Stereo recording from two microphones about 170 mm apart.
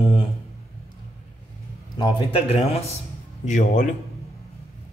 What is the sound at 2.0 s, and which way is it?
Speech, 35° left (ahead or behind).